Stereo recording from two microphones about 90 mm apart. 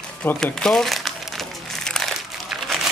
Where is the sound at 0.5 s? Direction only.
5° left (ahead or behind).